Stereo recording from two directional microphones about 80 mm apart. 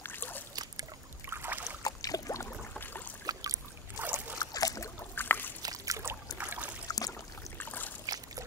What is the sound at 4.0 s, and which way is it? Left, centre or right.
Boat, right.